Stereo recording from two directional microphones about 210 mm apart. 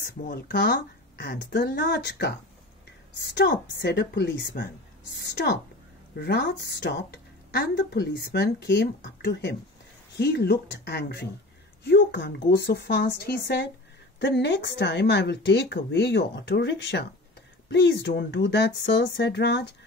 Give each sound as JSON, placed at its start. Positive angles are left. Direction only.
{"t": 0.0, "sound": "a woman's voice", "side_deg": 45}